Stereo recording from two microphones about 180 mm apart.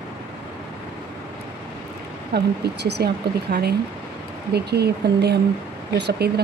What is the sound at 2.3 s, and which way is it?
Speech, 65° right (ahead or behind).